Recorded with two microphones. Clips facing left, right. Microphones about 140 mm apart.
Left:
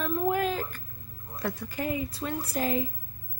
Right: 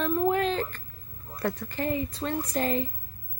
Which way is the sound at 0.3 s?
5° left (ahead or behind).